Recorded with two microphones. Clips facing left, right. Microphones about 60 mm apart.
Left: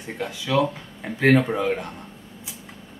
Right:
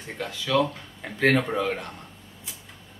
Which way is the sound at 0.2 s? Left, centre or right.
Centre.